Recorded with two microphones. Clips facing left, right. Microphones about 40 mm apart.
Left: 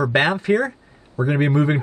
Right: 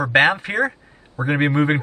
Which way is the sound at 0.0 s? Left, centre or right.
Right.